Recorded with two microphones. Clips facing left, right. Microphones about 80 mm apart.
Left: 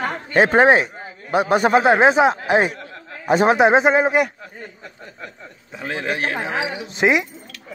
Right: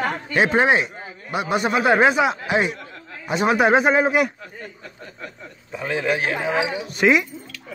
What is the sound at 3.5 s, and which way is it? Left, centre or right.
Speech, left.